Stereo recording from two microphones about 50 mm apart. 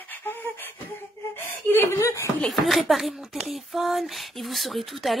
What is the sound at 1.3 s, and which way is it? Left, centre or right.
Chuckle, left.